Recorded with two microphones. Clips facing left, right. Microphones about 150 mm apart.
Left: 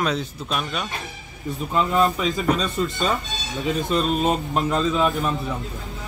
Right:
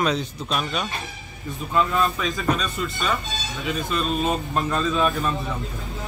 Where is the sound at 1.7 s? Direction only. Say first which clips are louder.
Left 2 dB; 20° left (ahead or behind).